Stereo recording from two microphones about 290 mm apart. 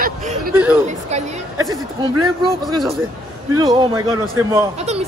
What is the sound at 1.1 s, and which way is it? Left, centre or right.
Speech, right.